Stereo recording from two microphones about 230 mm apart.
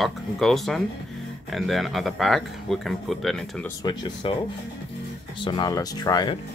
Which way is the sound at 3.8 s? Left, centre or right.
Centre.